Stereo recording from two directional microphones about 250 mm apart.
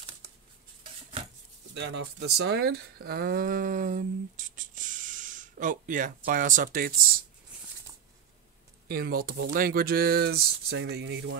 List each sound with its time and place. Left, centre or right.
1.7 s speech: right
8.8 s speech: right